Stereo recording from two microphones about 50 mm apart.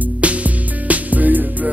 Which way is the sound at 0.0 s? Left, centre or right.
Right.